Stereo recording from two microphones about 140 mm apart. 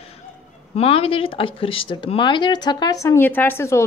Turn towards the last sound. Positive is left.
turn(degrees=20)  # may be behind; listen again after turning